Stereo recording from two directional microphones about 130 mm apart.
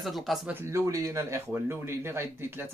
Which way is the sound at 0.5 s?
25° right (ahead or behind).